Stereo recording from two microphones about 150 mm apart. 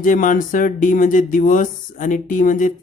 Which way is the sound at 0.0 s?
60° left (ahead or behind).